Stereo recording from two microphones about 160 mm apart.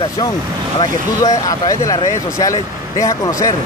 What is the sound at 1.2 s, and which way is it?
Speech, 20° left (ahead or behind).